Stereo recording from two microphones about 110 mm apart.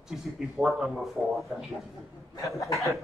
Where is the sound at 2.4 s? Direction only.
30° left (ahead or behind).